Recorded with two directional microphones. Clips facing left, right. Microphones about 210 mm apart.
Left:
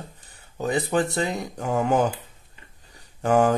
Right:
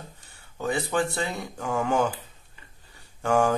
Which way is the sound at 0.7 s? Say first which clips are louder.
Left 3 dB; 40° left (ahead or behind).